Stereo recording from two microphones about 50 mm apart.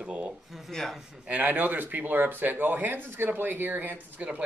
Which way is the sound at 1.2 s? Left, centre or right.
Right.